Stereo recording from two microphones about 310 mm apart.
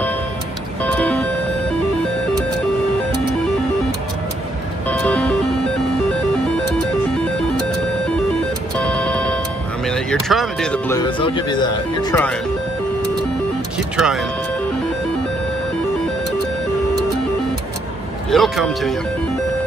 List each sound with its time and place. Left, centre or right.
0.8 s music: centre
4.8 s music: centre
8.3 s music: centre
9.8 s speech: centre
13.9 s speech: centre
18.3 s a man's voice: centre